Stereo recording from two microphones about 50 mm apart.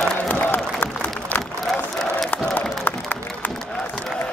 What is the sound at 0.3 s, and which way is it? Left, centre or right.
Crowd, left.